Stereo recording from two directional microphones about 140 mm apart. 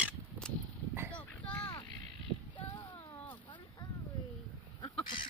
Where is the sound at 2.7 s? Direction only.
30° left (ahead or behind).